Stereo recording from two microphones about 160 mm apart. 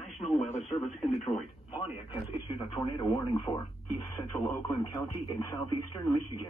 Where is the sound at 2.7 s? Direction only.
30° left (ahead or behind).